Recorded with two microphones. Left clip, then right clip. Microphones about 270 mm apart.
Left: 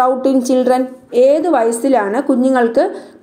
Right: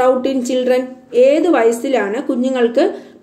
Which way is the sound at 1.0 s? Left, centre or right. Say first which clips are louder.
Even; left.